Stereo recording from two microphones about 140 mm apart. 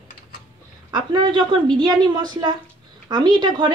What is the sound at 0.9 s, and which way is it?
A woman's voice, 35° right (ahead or behind).